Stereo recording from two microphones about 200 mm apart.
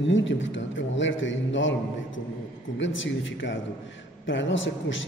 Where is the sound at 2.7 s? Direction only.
70° left (ahead or behind).